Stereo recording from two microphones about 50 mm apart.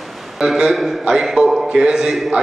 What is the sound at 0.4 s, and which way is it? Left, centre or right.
A man's voice, centre.